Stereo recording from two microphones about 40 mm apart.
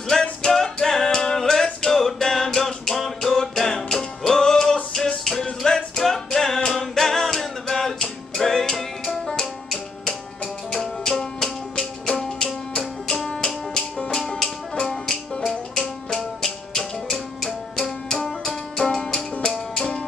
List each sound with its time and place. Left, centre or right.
0.1 s music: centre